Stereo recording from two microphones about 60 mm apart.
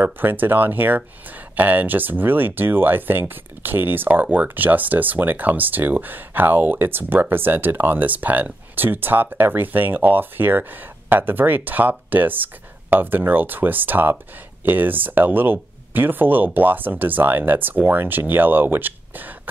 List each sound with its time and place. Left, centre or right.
0.0 s speech: right